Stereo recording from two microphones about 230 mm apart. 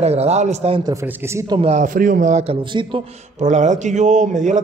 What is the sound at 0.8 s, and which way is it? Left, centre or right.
Speech, centre.